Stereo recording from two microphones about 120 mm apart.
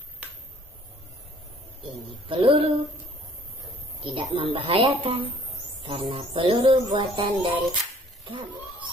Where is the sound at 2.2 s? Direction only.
45° right (ahead or behind).